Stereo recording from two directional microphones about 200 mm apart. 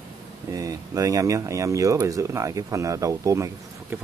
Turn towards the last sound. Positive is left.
turn(degrees=-15)  # may be behind; listen again after turning